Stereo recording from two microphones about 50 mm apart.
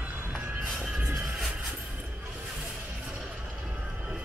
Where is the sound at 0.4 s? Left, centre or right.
Right.